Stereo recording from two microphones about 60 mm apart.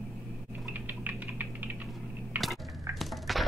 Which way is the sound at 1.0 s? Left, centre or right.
Right.